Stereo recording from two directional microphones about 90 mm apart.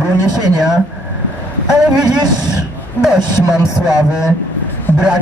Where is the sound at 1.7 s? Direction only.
5° right (ahead or behind).